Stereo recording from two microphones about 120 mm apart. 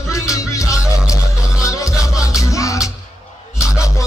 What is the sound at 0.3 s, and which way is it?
Music, 25° left (ahead or behind).